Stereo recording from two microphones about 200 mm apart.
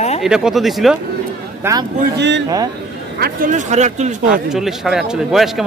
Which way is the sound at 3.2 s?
50° right (ahead or behind).